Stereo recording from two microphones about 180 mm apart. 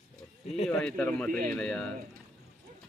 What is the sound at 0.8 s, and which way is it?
Speech, 10° left (ahead or behind).